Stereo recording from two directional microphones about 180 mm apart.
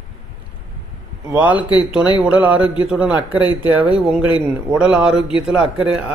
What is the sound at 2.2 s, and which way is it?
Speech, 5° right (ahead or behind).